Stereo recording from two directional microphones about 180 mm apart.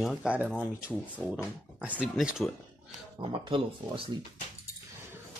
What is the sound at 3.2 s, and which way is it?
Speech, 30° right (ahead or behind).